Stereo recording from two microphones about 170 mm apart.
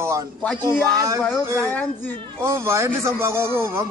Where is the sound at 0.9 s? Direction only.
20° right (ahead or behind).